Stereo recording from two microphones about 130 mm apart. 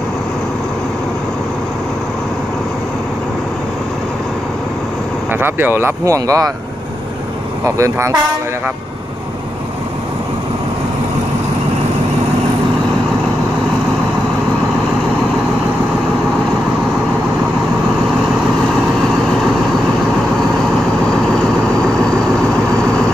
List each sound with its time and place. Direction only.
5.3 s speech: 15° right (ahead or behind)
7.6 s speech: 25° right (ahead or behind)